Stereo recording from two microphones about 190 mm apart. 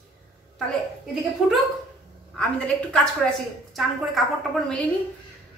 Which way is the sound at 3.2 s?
5° left (ahead or behind).